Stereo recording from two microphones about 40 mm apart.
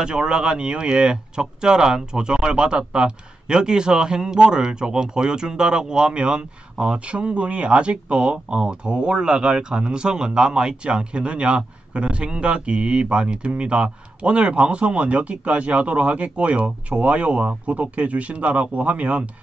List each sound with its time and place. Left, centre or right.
0.0 s speech: centre; by 19.2 s right